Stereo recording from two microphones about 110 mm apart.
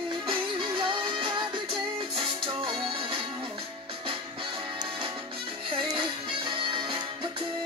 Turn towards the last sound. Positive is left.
turn(degrees=-45)  # may be behind; listen again after turning